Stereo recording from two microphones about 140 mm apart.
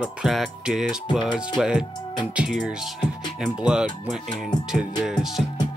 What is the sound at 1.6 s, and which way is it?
Speech, 5° right (ahead or behind).